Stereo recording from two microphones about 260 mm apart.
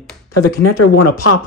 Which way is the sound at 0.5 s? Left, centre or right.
Left.